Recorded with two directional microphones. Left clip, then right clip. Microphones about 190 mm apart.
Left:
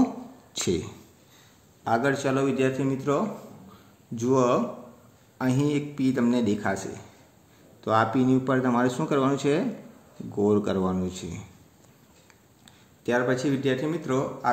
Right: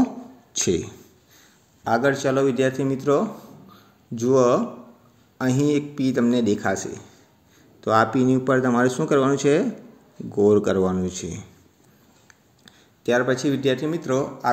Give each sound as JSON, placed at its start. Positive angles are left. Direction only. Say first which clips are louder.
{"t": 0.0, "sound": "a sound", "louder": "right 2 dB", "side_deg": -20}
{"t": 1.9, "sound": "speech", "louder": "right 4 dB", "side_deg": -25}
{"t": 12.6, "sound": "speech", "louder": "right 6 dB", "side_deg": -25}